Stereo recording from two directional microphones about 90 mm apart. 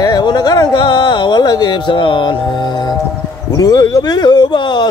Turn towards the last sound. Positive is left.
turn(degrees=45)  # may be behind; listen again after turning